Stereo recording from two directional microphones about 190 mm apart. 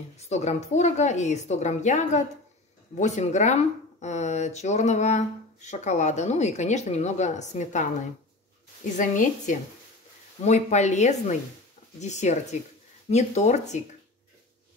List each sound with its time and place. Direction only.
0.2 s speech: 35° left (ahead or behind)
8.9 s speech: 40° left (ahead or behind)